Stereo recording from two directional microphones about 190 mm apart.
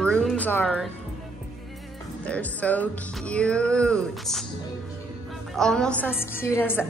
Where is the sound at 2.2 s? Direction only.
5° left (ahead or behind).